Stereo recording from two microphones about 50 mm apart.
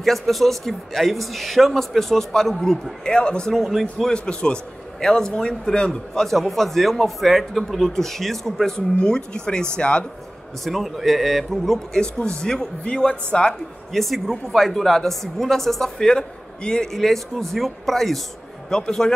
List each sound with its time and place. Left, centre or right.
0.0 s a woman's voice: centre
3.1 s a man's voice: centre
3.5 s a woman's voice: centre
4.1 s a man's voice: centre
8.7 s a man's voice: centre
10.6 s a man's voice: centre
13.9 s a woman's voice: centre
16.9 s a woman's voice: centre
18.7 s a man's voice: centre